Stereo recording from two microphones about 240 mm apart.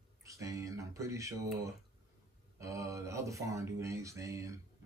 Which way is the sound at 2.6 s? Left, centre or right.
Centre.